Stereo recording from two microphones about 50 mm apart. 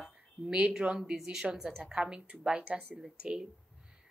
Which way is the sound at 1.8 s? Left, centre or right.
Centre.